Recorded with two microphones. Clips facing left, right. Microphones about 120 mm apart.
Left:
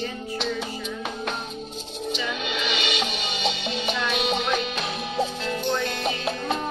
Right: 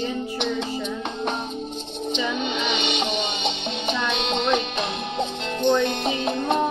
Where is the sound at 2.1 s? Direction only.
5° left (ahead or behind).